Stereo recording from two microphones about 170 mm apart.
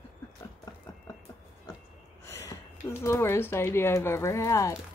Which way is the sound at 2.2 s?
20° left (ahead or behind).